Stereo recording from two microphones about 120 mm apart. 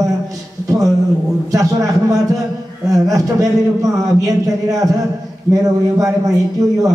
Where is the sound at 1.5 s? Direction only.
30° right (ahead or behind).